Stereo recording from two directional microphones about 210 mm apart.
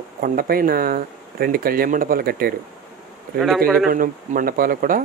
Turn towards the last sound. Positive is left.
turn(degrees=-40)  # may be behind; listen again after turning